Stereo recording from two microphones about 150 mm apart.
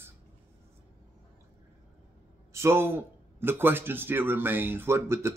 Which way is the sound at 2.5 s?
15° right (ahead or behind).